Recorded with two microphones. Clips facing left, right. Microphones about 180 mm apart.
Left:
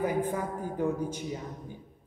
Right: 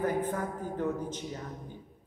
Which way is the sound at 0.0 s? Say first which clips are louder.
Left 1 dB; 10° left (ahead or behind).